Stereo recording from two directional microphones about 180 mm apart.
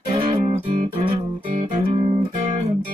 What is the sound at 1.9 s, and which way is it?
Music, 45° right (ahead or behind).